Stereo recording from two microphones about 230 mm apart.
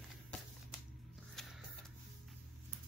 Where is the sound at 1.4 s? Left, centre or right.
Centre.